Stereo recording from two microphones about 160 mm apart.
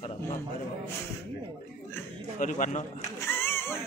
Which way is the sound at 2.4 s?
50° left (ahead or behind).